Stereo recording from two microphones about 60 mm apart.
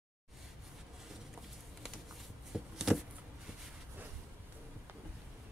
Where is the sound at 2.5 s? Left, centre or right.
Centre.